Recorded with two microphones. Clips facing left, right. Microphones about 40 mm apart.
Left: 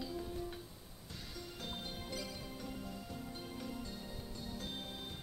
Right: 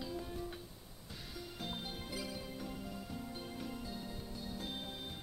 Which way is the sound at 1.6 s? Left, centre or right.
Centre.